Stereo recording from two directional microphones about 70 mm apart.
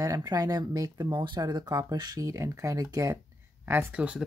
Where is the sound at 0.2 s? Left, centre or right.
Right.